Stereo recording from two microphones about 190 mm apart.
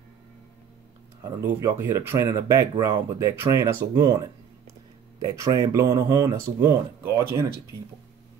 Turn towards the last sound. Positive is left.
turn(degrees=-15)  # may be behind; listen again after turning